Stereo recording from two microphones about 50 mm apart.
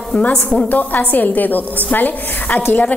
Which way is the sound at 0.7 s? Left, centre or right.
Left.